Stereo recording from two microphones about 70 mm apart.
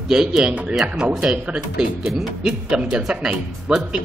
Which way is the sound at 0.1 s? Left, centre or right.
Centre.